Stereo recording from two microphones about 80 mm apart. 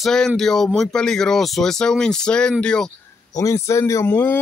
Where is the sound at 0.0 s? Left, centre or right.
Centre.